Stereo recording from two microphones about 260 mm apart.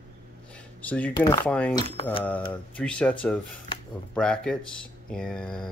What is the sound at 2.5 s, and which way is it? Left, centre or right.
Speech, centre.